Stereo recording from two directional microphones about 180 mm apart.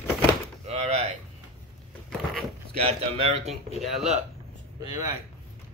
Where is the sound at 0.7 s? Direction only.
35° right (ahead or behind).